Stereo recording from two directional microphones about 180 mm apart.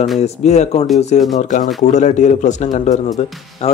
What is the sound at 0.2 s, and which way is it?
Speech, 40° left (ahead or behind).